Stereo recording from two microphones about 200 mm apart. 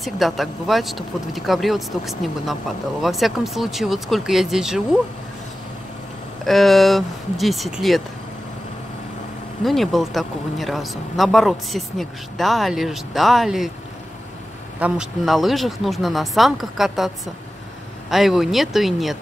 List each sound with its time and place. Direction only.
0.0 s speech: centre (ahead or behind)
6.4 s speech: centre (ahead or behind)
9.7 s speech: centre (ahead or behind)
14.8 s speech: centre (ahead or behind)
18.1 s speech: centre (ahead or behind)